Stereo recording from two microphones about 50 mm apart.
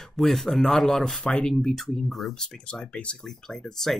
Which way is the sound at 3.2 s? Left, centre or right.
Centre.